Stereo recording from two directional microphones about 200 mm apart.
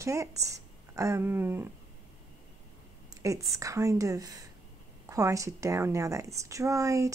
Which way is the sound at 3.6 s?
15° right (ahead or behind).